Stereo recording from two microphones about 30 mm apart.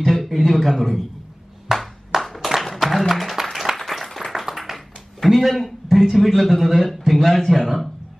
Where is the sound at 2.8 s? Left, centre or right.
Centre.